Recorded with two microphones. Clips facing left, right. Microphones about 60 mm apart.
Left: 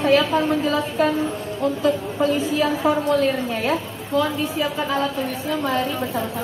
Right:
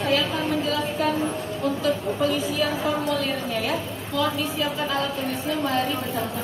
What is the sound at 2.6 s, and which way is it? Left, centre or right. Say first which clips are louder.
A woman's voice: left 4 dB; left.